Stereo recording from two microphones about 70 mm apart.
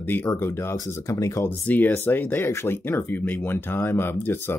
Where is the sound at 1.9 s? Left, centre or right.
Left.